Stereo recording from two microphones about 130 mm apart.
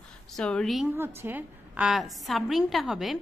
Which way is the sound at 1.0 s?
20° right (ahead or behind).